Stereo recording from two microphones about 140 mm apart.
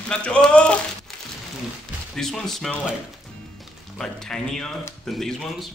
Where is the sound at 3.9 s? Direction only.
5° left (ahead or behind).